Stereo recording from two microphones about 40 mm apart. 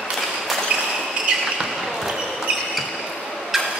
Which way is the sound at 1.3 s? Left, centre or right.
Right.